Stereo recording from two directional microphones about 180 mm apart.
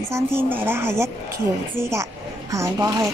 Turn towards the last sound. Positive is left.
turn(degrees=-15)  # may be behind; listen again after turning